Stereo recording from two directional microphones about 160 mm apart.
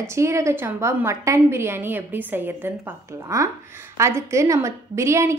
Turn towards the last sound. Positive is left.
turn(degrees=-15)  # may be behind; listen again after turning